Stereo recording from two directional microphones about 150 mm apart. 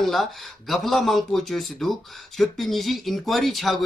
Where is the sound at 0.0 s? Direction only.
Centre (ahead or behind).